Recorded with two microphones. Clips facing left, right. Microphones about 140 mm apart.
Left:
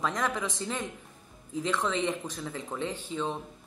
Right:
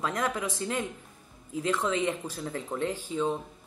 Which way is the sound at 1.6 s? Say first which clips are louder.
Right 2 dB; 10° right (ahead or behind).